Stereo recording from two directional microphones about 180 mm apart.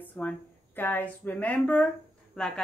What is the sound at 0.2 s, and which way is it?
A woman's voice, 10° left (ahead or behind).